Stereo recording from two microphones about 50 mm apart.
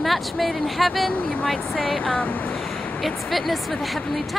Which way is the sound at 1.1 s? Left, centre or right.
Left.